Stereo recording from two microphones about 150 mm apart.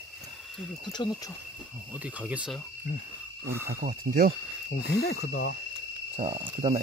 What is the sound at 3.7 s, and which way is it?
Speech, 70° right (ahead or behind).